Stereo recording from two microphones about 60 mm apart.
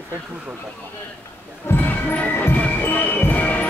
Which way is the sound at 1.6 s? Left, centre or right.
Left.